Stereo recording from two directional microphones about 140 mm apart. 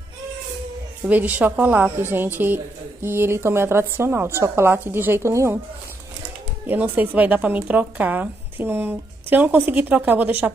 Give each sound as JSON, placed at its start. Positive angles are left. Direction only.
{"t": 1.0, "sound": "a woman's voice", "side_deg": -10}
{"t": 6.7, "sound": "a woman's voice", "side_deg": -15}